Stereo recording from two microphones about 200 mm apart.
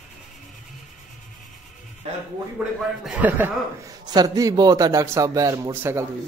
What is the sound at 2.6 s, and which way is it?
A man's voice, 10° right (ahead or behind).